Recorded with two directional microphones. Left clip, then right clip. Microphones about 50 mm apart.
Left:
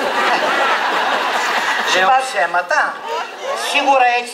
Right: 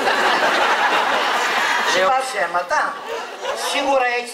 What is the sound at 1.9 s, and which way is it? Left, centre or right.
A man's voice, left.